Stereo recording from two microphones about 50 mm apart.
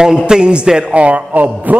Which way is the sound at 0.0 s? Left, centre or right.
Centre.